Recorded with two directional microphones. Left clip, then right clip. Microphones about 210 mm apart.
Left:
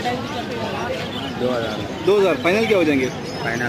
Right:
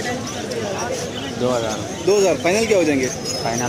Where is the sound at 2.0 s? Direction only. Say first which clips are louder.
Even; centre (ahead or behind).